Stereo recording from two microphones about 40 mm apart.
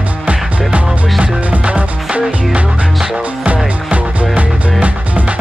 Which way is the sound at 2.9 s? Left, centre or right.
Centre.